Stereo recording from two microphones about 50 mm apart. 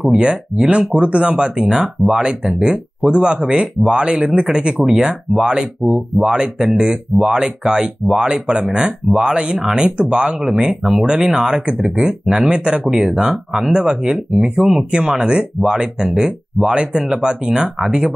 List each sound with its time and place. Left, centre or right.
0.1 s speech: right
12.8 s speech: centre